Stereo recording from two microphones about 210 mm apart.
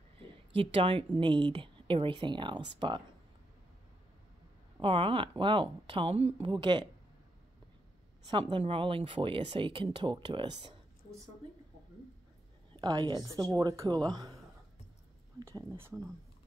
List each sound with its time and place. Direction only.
0.6 s speech: 25° right (ahead or behind)
4.8 s speech: 25° right (ahead or behind)
8.3 s speech: 20° right (ahead or behind)
12.7 s a woman's voice: 20° right (ahead or behind)